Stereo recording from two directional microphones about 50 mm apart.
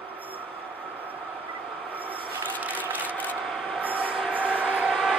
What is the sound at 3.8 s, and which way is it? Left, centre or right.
Train, right.